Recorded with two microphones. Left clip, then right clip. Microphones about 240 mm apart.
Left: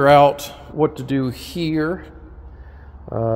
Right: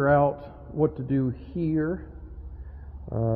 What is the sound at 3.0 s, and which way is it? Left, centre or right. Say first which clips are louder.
Speech: left 8 dB; centre.